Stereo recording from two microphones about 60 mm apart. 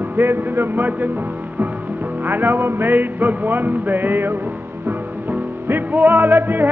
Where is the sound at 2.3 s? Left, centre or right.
Right.